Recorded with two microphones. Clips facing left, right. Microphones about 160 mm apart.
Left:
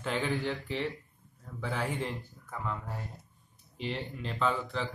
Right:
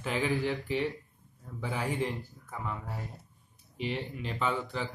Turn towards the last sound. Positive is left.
turn(degrees=-5)  # may be behind; listen again after turning